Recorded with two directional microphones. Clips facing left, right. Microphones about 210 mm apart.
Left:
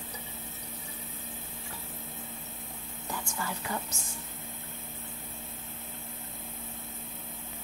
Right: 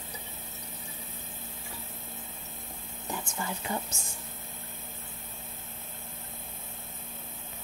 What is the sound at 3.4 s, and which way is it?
Speech, 25° right (ahead or behind).